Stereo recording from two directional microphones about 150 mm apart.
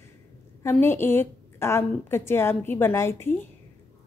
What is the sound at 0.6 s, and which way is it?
Speech, 15° left (ahead or behind).